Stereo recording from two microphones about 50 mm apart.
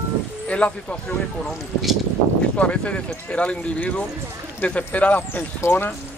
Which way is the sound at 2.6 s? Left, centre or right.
Left.